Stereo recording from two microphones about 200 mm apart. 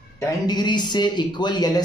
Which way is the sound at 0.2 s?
20° left (ahead or behind).